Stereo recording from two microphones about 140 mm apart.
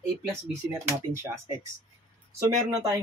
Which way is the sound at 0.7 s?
15° right (ahead or behind).